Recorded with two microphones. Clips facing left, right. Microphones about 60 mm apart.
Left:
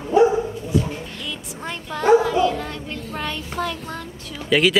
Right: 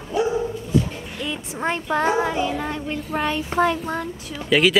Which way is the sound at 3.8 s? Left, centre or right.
Centre.